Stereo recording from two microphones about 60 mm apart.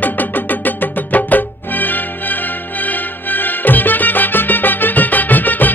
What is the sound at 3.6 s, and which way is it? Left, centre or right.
Music, left.